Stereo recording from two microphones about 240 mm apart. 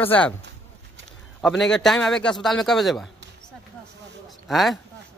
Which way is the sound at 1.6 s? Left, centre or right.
Centre.